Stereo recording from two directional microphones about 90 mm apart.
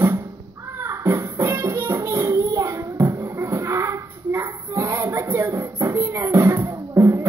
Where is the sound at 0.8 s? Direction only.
30° right (ahead or behind).